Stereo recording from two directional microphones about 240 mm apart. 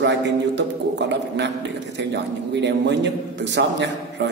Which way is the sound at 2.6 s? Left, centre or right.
Right.